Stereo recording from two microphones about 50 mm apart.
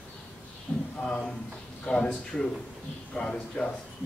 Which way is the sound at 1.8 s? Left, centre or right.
Centre.